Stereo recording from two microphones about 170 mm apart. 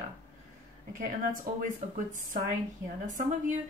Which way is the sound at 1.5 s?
60° right (ahead or behind).